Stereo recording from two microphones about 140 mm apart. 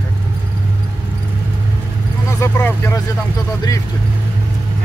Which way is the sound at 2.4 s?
15° left (ahead or behind).